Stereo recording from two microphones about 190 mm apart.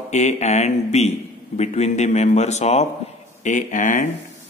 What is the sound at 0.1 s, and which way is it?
A man's voice, 35° left (ahead or behind).